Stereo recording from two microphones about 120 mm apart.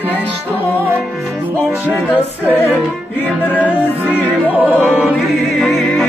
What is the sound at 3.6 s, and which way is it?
Music, 10° right (ahead or behind).